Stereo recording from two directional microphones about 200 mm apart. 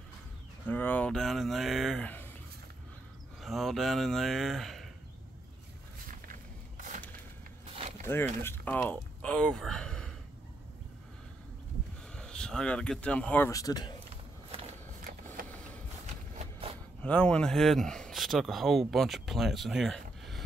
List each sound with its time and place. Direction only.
0.7 s speech: 10° left (ahead or behind)
3.4 s speech: centre (ahead or behind)
8.0 s speech: 10° left (ahead or behind)
12.1 s speech: 5° left (ahead or behind)
15.4 s printer: 40° right (ahead or behind)
16.3 s a sound: 30° right (ahead or behind)
17.0 s speech: 5° left (ahead or behind)